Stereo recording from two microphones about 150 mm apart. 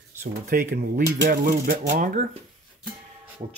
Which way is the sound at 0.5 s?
75° right (ahead or behind).